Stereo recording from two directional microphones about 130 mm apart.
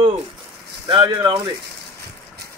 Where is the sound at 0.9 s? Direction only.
35° right (ahead or behind).